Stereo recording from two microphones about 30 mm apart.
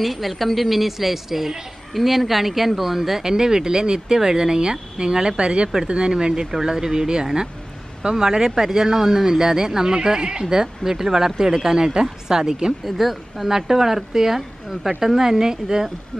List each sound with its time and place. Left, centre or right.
0.0 s speech: centre; by 10.4 s right
10.4 s speech: centre
12.8 s speech: centre